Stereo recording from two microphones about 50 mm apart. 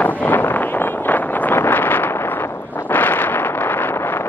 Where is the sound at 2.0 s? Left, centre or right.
Left.